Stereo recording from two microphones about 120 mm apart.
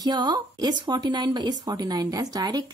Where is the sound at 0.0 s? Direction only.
35° right (ahead or behind).